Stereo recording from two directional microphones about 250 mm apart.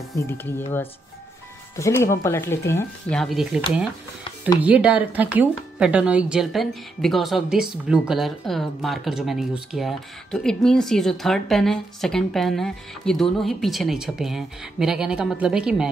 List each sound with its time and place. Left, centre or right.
0.1 s speech: centre
1.8 s speech: centre